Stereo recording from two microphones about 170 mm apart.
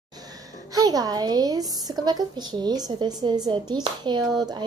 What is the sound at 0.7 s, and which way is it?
Speech, 20° right (ahead or behind).